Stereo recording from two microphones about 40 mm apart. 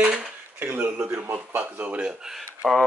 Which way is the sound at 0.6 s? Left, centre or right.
Right.